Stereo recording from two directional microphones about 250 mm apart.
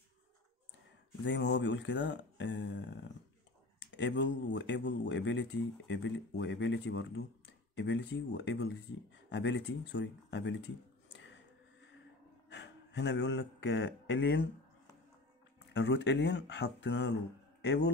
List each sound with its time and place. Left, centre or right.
1.2 s speech: left
11.1 s a sound: left
12.4 s speech: left
15.7 s speech: left